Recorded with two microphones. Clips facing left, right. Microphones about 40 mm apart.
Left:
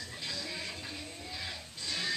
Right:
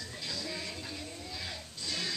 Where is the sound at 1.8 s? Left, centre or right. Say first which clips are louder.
Left 1 dB; centre.